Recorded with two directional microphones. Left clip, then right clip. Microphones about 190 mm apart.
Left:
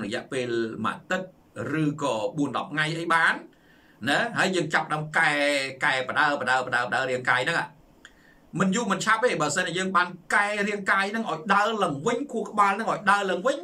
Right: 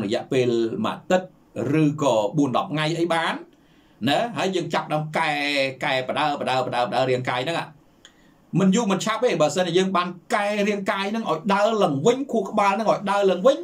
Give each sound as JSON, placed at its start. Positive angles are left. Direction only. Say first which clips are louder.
{"t": 0.0, "sound": "speech", "louder": "right 8 dB", "side_deg": -15}